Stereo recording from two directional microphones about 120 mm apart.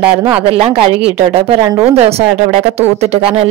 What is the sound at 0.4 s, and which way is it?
A woman's voice, 50° right (ahead or behind).